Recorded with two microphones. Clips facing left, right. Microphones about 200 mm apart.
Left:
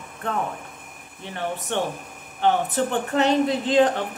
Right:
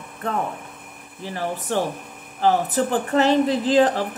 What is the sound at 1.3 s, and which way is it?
Speech, centre (ahead or behind).